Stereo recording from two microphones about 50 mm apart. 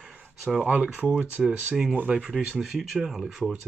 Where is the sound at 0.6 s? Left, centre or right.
Right.